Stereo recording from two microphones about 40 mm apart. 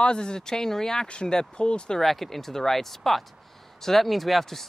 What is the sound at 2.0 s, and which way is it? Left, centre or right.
Speech, centre.